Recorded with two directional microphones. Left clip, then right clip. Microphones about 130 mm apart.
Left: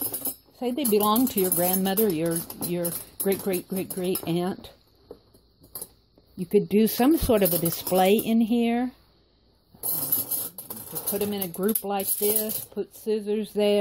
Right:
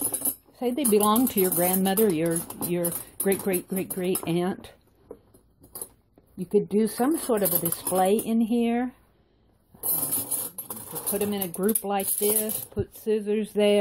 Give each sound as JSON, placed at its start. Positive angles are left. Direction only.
{"t": 0.0, "sound": "speech", "side_deg": 0}
{"t": 6.3, "sound": "speech", "side_deg": 20}
{"t": 6.7, "sound": "speech", "side_deg": 40}
{"t": 9.8, "sound": "a sound", "side_deg": 0}
{"t": 10.2, "sound": "speech", "side_deg": 0}